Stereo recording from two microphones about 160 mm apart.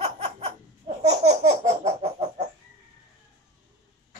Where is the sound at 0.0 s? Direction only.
40° right (ahead or behind).